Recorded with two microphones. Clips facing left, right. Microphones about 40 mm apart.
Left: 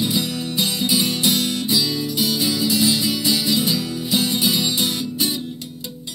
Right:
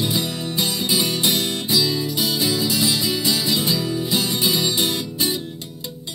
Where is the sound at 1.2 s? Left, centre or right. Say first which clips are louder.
Left 1 dB; right.